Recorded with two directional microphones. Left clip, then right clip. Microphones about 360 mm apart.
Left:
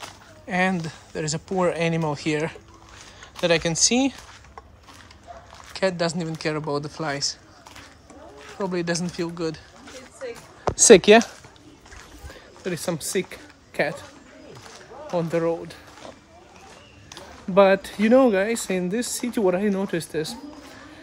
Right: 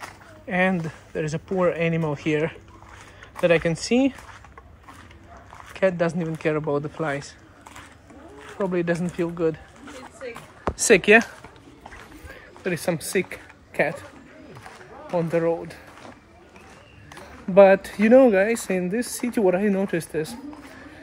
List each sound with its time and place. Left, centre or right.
0.5 s speech: centre
5.7 s speech: centre
8.7 s speech: centre
10.8 s speech: left
12.3 s a sound: centre
15.0 s speech: centre
17.1 s speech: centre